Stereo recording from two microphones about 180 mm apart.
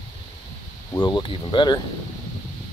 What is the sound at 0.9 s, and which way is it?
Speech, 25° left (ahead or behind).